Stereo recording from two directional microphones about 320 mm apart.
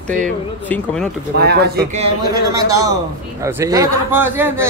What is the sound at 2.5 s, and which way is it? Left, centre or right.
A man's voice, centre.